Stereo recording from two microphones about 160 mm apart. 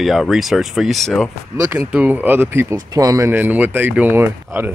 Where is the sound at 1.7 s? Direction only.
10° right (ahead or behind).